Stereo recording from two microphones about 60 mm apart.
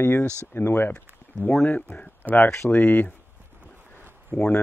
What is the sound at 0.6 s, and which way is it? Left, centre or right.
Speech, left.